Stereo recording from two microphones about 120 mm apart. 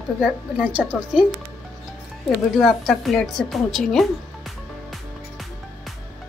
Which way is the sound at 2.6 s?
Centre (ahead or behind).